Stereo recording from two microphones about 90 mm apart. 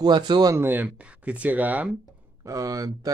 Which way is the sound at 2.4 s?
35° right (ahead or behind).